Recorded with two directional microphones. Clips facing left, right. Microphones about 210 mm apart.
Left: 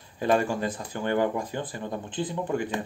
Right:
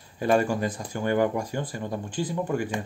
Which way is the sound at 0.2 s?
45° right (ahead or behind).